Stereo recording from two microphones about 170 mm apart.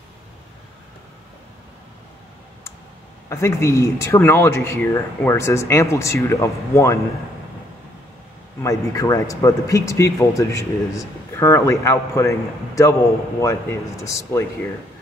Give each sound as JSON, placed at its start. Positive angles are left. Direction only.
{"t": 3.3, "sound": "speech", "side_deg": 15}
{"t": 8.6, "sound": "speech", "side_deg": 20}